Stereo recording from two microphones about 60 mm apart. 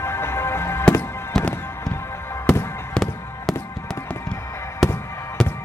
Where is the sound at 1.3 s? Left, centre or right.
Centre.